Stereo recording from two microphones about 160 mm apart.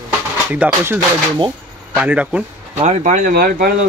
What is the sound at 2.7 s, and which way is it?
Speech, 45° right (ahead or behind).